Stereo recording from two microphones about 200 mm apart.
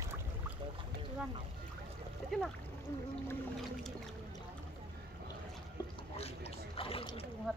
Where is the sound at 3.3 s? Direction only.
Centre (ahead or behind).